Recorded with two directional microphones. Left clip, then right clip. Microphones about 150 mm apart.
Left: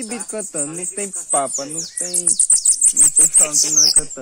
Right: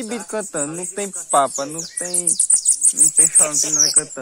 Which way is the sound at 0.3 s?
15° right (ahead or behind).